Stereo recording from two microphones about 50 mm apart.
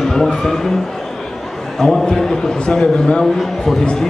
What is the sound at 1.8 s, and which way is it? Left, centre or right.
A man's voice, centre.